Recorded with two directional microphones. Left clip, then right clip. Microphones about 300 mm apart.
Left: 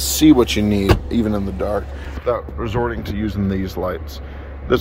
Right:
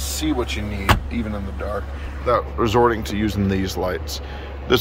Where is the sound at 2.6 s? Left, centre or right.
Centre.